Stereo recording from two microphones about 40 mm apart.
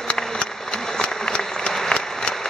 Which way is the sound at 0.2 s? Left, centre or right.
Left.